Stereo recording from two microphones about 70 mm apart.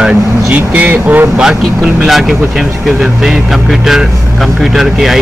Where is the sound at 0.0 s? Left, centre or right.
Right.